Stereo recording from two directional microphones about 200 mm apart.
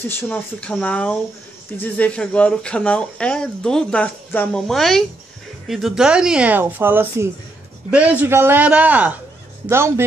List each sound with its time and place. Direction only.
0.0 s a man's voice: 10° left (ahead or behind); by 10.0 s 10° right (ahead or behind)